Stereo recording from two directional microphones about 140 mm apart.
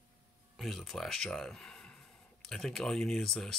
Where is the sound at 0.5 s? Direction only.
Centre (ahead or behind).